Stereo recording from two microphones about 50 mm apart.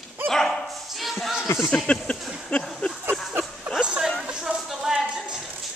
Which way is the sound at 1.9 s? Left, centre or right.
Left.